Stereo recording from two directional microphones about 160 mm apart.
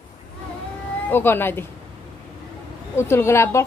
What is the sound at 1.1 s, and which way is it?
Speech, 15° left (ahead or behind).